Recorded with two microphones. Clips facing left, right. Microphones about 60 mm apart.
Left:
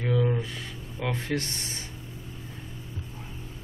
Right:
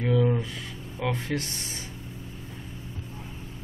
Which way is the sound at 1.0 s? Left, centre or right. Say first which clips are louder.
Right 2 dB; centre.